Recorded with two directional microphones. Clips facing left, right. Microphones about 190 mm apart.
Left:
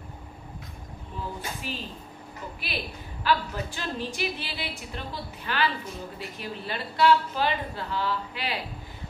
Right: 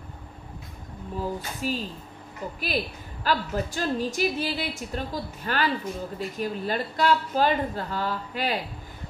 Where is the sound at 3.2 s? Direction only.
45° right (ahead or behind).